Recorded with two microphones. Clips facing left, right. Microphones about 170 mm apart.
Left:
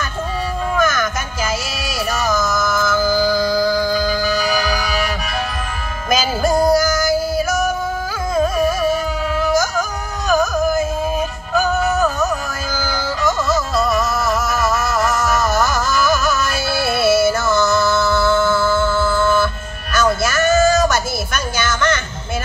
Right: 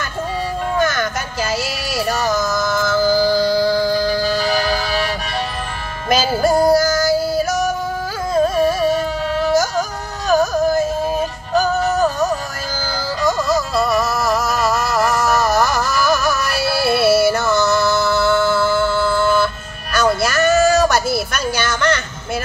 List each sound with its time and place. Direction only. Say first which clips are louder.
0.7 s music: even; 30° right (ahead or behind)